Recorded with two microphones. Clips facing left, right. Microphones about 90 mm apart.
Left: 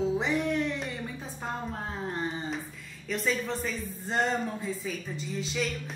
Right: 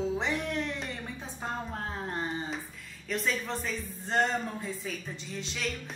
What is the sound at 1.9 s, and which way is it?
A woman's voice, centre (ahead or behind).